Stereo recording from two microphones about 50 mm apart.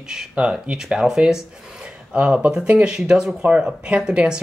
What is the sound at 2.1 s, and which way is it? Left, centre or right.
Speech, right.